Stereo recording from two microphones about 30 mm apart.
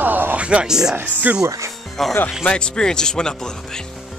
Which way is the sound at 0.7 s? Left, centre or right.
Centre.